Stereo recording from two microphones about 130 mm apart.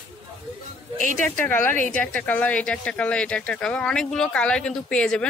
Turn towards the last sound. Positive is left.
turn(degrees=5)  # may be behind; listen again after turning